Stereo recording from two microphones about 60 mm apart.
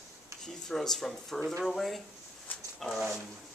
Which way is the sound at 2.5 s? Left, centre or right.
Left.